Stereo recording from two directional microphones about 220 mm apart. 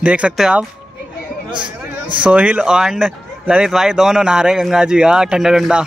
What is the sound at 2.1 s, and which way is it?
Speech, 5° right (ahead or behind).